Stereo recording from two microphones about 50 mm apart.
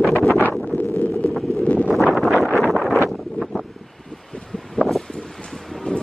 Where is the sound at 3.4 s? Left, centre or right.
Centre.